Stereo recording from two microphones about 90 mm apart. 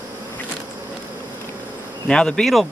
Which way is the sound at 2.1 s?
10° left (ahead or behind).